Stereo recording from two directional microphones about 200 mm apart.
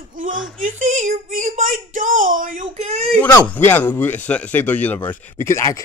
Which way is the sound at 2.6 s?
30° right (ahead or behind).